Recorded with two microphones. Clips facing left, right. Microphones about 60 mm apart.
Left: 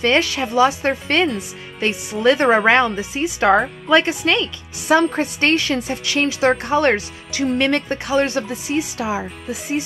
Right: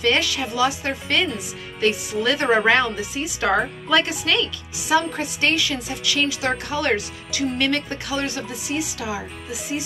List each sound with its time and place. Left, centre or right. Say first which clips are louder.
0.0 s a woman's voice: left 3 dB; left